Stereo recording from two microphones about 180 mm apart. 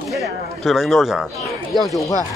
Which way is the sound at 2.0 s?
15° left (ahead or behind).